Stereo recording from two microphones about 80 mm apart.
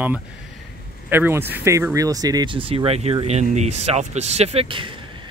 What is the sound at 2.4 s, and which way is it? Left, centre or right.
Speech, right.